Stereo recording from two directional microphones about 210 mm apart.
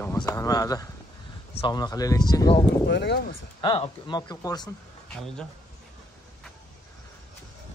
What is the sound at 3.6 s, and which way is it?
Speech, 20° left (ahead or behind).